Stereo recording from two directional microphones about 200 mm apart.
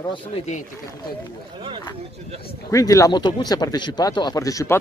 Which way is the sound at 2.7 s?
15° left (ahead or behind).